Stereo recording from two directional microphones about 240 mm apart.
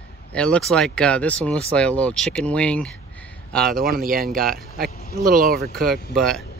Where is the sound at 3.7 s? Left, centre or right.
Right.